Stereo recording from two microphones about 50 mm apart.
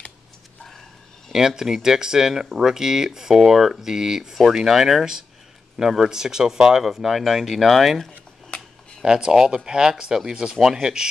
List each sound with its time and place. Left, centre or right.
1.3 s speech: centre
8.5 s a sound: left
9.0 s speech: centre